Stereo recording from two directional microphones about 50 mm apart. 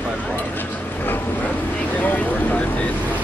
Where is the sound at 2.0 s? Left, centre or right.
Left.